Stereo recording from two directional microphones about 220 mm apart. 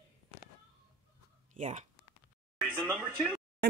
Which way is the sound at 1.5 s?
35° right (ahead or behind).